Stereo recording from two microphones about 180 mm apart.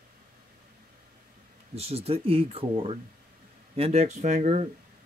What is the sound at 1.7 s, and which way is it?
Speech, 35° right (ahead or behind).